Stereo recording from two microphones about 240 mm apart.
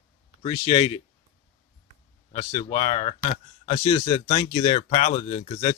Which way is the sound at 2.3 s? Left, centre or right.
Left.